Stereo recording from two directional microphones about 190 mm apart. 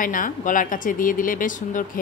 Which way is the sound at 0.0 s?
45° left (ahead or behind).